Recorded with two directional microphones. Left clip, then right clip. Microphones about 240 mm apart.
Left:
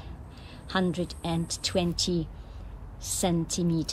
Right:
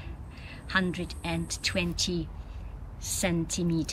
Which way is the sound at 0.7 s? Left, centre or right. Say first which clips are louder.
Even; centre.